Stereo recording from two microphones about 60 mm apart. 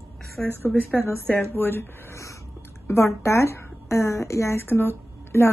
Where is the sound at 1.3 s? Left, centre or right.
Left.